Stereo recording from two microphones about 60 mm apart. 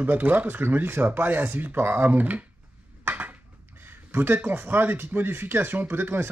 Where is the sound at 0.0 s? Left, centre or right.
Right.